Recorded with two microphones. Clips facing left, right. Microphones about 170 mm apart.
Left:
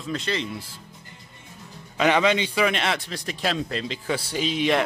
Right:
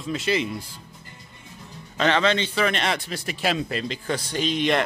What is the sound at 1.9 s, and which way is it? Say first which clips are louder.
A man's voice: left 1 dB; 10° left (ahead or behind).